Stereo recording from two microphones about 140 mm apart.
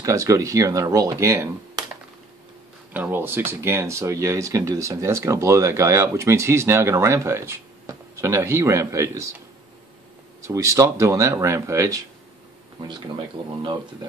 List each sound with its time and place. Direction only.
0.0 s speech: 25° right (ahead or behind)
2.9 s speech: 15° right (ahead or behind)
10.4 s speech: 20° right (ahead or behind)